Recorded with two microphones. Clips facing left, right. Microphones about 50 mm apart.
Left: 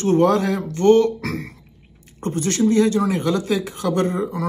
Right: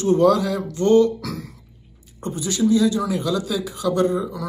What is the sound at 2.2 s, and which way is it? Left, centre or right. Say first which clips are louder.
Speech: left 2 dB; left.